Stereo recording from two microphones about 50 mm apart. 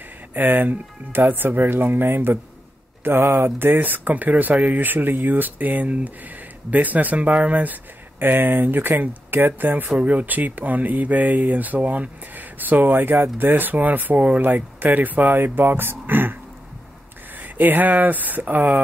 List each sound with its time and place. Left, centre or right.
0.3 s speech: right
17.4 s speech: right